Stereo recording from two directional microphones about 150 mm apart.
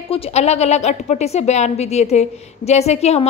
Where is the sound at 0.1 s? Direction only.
45° left (ahead or behind).